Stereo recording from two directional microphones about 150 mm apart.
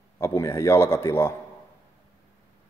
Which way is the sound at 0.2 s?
20° left (ahead or behind).